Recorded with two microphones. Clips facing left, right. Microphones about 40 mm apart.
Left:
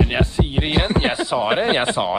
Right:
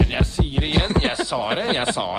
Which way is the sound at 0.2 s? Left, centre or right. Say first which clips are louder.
Left 3 dB; centre.